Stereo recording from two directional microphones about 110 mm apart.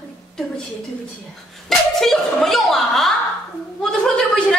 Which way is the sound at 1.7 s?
5° left (ahead or behind).